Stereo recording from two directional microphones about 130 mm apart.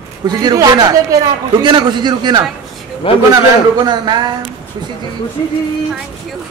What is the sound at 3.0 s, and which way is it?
Speech, 40° left (ahead or behind).